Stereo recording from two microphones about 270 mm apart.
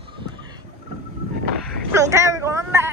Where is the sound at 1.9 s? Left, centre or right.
Centre.